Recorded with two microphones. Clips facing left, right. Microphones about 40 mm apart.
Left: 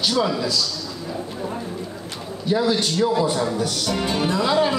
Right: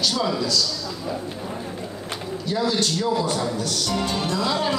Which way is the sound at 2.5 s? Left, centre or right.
Centre.